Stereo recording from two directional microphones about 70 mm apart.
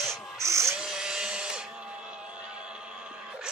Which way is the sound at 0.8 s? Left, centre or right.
Centre.